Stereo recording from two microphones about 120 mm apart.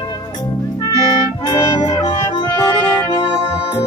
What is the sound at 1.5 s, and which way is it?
Music, 25° left (ahead or behind).